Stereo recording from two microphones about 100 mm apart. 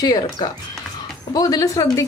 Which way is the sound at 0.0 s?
40° left (ahead or behind).